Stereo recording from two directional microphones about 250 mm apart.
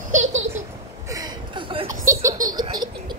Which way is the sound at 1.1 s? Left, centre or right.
Centre.